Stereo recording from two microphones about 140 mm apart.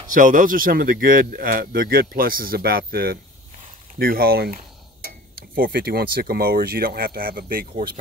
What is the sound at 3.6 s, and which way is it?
Speech, 75° right (ahead or behind).